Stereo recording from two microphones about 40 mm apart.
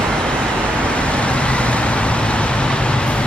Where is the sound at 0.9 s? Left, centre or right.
Left.